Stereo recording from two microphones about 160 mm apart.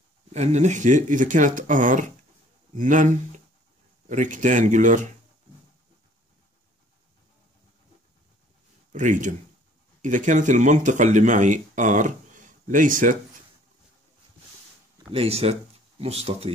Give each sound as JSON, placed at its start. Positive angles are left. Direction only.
{"t": 0.3, "sound": "speech", "side_deg": -45}
{"t": 8.9, "sound": "speech", "side_deg": -50}
{"t": 15.1, "sound": "speech", "side_deg": -40}